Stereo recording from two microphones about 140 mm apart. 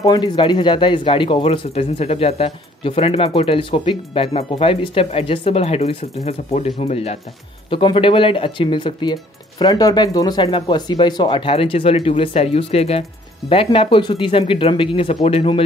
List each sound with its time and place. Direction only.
0.0 s speech: 30° left (ahead or behind)